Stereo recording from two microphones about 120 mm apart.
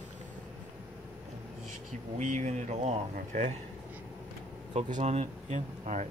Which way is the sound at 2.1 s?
85° right.